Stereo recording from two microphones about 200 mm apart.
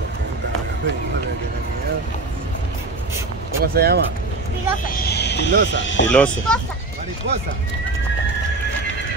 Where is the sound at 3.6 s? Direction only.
50° right (ahead or behind).